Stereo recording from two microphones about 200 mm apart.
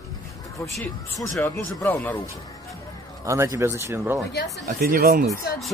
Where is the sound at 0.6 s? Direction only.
Centre (ahead or behind).